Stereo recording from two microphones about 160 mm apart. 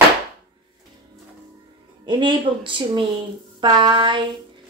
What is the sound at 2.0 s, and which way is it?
Speech, 30° right (ahead or behind).